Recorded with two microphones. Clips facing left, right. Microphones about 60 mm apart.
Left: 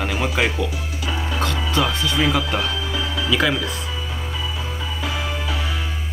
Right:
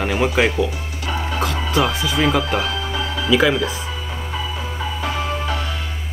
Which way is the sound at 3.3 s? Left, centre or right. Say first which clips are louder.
Right 5 dB; centre.